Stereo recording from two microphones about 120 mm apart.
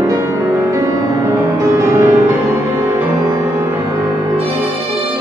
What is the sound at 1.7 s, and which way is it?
Music, 25° right (ahead or behind).